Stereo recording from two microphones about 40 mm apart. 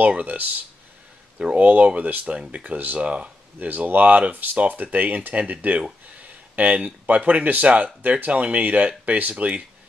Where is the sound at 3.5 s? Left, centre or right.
Right.